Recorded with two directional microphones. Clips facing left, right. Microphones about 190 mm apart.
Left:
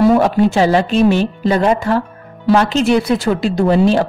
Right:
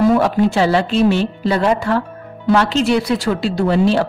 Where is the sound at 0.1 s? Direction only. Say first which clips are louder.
Left 2 dB; 45° left (ahead or behind).